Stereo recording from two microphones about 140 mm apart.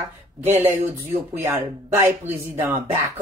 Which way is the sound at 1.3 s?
15° right (ahead or behind).